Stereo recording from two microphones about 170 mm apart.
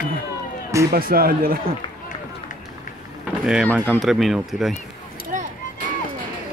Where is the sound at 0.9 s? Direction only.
60° right (ahead or behind).